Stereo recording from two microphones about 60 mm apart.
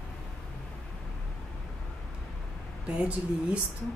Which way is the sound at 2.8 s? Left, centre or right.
Centre.